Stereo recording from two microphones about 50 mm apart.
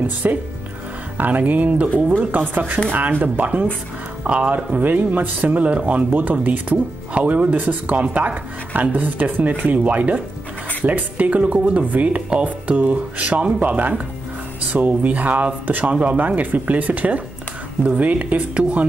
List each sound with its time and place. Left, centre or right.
0.2 s speech: right
4.7 s speech: right